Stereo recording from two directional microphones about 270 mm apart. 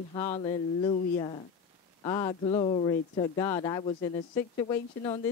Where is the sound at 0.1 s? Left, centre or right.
Left.